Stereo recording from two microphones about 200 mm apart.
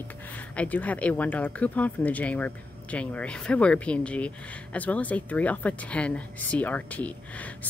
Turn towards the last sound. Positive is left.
turn(degrees=10)  # may be behind; listen again after turning